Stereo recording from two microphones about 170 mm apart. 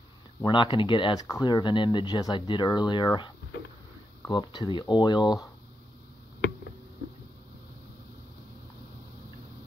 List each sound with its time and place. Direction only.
0.4 s speech: 30° left (ahead or behind)
4.3 s speech: 25° left (ahead or behind)